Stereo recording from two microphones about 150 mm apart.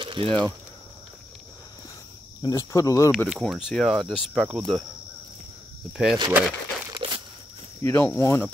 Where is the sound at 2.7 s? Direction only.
20° left (ahead or behind).